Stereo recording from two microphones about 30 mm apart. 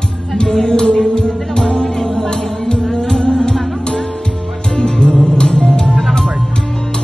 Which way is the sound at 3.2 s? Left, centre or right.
Left.